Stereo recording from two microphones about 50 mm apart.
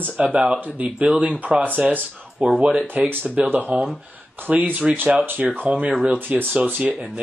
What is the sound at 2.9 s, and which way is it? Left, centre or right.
Speech, right.